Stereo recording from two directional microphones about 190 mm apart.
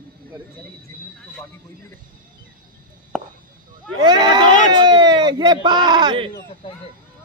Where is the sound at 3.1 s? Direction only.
5° left (ahead or behind).